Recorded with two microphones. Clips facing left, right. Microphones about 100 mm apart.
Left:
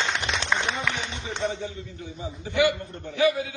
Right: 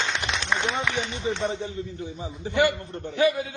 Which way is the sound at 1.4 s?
30° right (ahead or behind).